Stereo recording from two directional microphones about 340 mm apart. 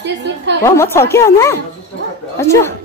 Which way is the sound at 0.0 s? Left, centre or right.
Right.